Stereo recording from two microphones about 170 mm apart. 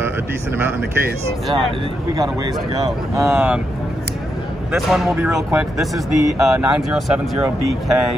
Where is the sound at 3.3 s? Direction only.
5° right (ahead or behind).